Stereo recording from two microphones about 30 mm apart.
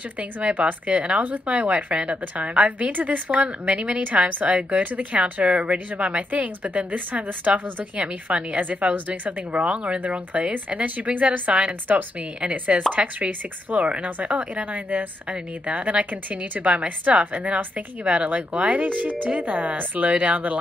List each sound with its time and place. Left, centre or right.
0.2 s a woman's voice: right
0.9 s a woman's voice: right
2.4 s a woman's voice: right
2.8 s a woman's voice: right
5.5 s a woman's voice: right
9.5 s a woman's voice: right
12.9 s a woman's voice: right